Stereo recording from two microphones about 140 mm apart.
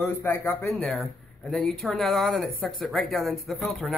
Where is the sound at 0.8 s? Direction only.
Centre (ahead or behind).